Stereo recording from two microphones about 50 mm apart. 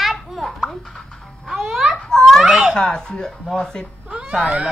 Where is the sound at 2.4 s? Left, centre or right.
Centre.